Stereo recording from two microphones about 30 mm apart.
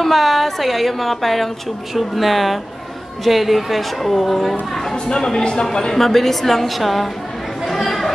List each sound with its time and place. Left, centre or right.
0.0 s a woman's voice: centre
5.0 s speech: left
5.9 s a woman's voice: centre
7.6 s chatter: centre